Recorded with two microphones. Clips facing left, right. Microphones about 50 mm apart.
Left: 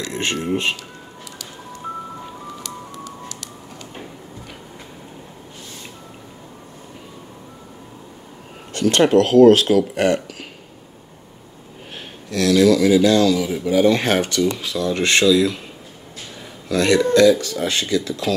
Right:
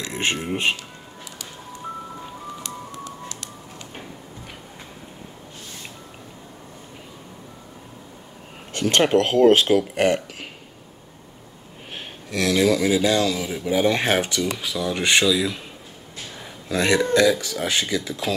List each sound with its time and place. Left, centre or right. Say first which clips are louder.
0.0 s speech: left 1 dB; right
8.7 s speech: left 4 dB; right
12.3 s speech: left 5 dB; right
16.6 s speech: left 4 dB; right